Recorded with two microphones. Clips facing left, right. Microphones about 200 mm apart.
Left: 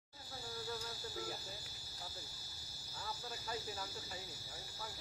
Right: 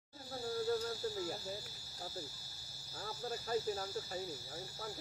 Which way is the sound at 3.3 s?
45° right (ahead or behind).